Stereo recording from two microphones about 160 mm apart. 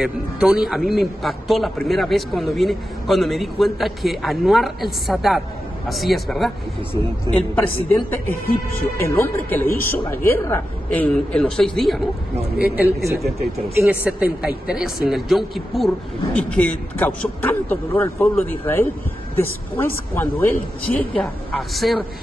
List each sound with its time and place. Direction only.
0.0 s a man's voice: 5° right (ahead or behind)
6.9 s speech: 15° left (ahead or behind)
12.5 s a man's voice: 10° right (ahead or behind)